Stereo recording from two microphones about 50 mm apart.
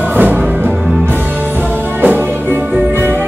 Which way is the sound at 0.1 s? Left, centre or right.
Right.